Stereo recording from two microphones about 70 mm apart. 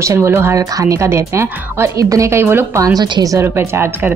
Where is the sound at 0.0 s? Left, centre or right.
Right.